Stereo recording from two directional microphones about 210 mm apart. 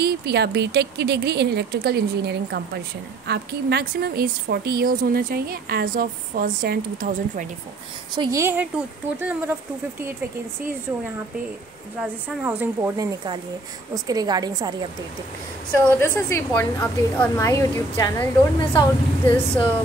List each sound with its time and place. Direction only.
0.0 s a woman's voice: 50° right (ahead or behind)
8.1 s speech: 20° right (ahead or behind)
12.0 s a woman's voice: 5° right (ahead or behind)
16.0 s a woman's voice: 15° left (ahead or behind)
18.6 s speech: 20° left (ahead or behind)
19.2 s a woman's voice: 10° left (ahead or behind)